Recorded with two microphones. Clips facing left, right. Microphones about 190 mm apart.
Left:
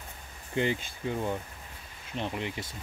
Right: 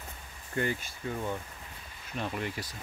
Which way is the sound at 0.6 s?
20° left (ahead or behind).